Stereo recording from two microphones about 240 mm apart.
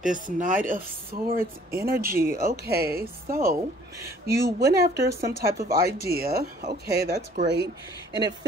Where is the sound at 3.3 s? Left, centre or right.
Right.